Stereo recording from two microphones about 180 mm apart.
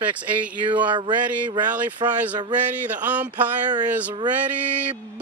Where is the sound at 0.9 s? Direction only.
25° right (ahead or behind).